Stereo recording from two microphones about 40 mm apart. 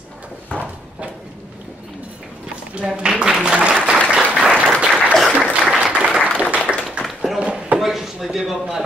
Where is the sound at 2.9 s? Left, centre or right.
Centre.